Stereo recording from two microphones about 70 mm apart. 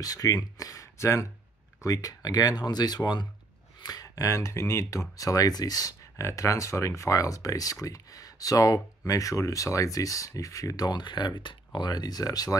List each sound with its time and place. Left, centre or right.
0.0 s speech: left